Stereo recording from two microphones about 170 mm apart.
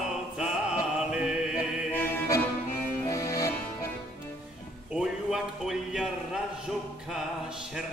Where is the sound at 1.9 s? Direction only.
10° left (ahead or behind).